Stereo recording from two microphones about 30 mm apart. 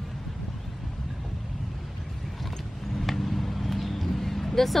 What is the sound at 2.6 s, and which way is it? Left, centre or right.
Vehicle, centre.